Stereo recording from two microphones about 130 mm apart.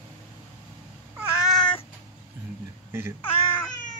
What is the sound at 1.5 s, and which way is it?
Cat, 5° left (ahead or behind).